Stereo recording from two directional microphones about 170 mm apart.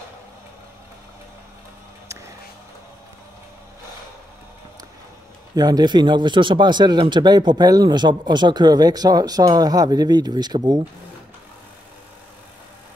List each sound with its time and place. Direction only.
5.6 s speech: 25° right (ahead or behind)